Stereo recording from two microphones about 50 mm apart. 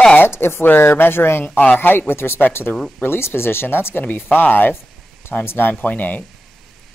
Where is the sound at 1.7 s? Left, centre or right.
Left.